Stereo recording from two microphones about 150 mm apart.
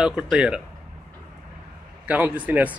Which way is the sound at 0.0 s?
5° right (ahead or behind).